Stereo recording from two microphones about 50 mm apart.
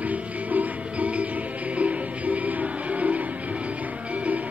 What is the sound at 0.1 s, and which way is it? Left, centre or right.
Music, right.